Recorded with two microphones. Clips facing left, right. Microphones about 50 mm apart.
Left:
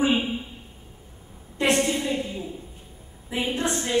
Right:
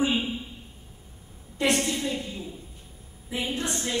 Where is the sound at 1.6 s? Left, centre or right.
Left.